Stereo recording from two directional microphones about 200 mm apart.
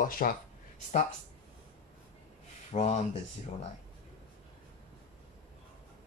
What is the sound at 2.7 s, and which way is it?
Speech, 35° left (ahead or behind).